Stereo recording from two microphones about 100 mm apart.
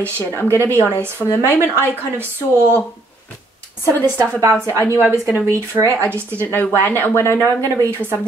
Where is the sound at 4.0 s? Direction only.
20° left (ahead or behind).